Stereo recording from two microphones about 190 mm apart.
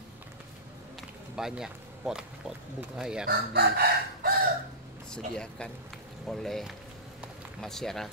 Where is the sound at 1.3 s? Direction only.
5° right (ahead or behind).